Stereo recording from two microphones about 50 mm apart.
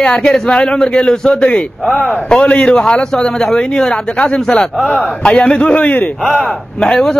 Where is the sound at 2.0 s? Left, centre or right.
Left.